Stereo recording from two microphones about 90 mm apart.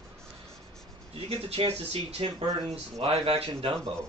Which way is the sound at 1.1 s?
90° right.